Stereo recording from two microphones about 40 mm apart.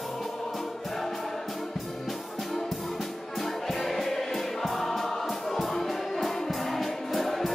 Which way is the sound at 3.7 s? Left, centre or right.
Centre.